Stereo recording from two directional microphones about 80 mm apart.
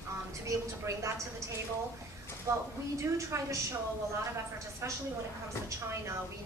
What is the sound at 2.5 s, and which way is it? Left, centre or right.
A woman's voice, right.